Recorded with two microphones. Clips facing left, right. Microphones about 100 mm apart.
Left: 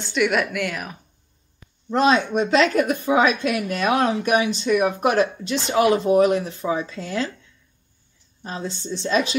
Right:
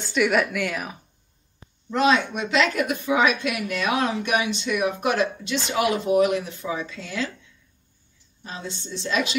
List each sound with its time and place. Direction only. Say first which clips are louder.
0.0 s speech: even; centre (ahead or behind)
1.9 s a woman's voice: left 2 dB; 35° left (ahead or behind)
8.4 s a woman's voice: left 5 dB; 35° left (ahead or behind)